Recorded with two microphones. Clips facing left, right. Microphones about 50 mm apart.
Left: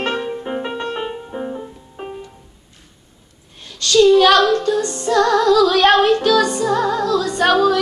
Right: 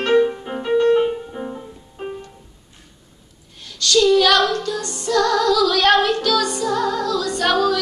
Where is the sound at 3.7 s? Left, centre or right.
Centre.